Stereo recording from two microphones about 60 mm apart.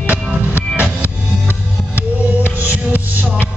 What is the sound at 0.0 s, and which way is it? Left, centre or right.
Music, right.